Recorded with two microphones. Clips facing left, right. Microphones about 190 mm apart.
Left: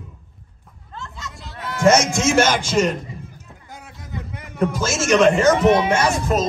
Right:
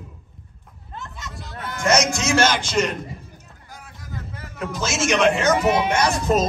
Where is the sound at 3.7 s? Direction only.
20° left (ahead or behind).